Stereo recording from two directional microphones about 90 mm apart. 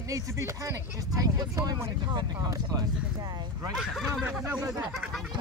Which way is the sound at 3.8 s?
Centre (ahead or behind).